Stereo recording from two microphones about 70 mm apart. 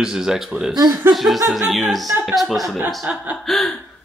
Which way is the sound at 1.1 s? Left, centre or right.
Centre.